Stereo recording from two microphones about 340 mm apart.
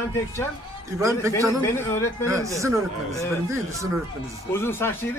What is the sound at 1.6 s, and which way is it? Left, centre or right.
Speech, centre.